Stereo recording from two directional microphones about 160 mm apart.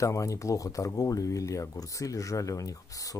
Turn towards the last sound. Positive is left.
turn(degrees=20)  # may be behind; listen again after turning